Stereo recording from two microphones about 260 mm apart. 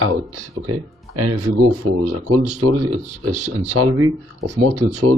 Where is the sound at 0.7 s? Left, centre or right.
Right.